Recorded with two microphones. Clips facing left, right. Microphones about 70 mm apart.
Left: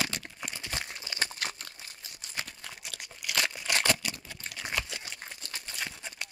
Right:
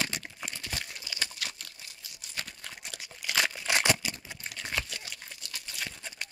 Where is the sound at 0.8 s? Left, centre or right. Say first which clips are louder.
Left 3 dB; left.